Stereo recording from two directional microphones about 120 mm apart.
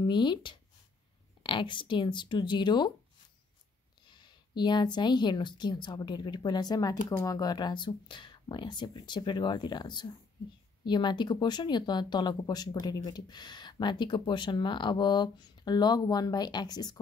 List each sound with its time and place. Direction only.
0.0 s speech: 40° left (ahead or behind)
4.0 s speech: 40° left (ahead or behind)